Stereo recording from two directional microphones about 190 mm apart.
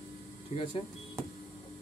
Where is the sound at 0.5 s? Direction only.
35° left (ahead or behind).